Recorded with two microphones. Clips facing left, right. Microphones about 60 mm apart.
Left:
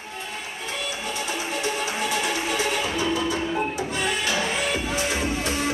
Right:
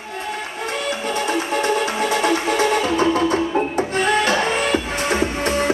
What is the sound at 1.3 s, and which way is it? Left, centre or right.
Music, right.